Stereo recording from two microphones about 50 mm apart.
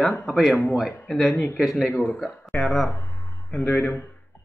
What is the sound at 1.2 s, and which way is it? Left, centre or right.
Speech, left.